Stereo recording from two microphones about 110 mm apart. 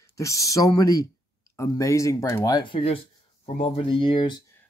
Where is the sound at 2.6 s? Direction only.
55° left (ahead or behind).